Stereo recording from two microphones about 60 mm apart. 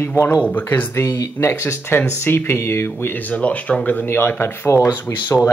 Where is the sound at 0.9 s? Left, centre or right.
Left.